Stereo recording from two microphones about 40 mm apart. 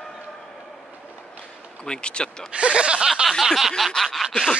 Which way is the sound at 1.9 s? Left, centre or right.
Left.